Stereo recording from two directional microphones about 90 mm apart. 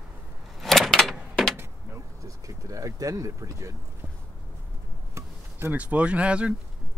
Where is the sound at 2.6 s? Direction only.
40° right (ahead or behind).